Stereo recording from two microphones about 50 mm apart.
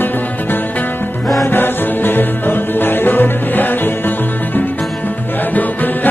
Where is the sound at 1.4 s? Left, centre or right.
Left.